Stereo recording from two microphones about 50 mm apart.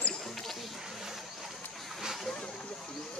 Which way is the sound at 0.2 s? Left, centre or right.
Centre.